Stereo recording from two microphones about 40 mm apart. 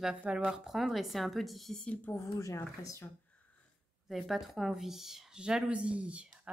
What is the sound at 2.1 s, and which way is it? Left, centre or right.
Speech, left.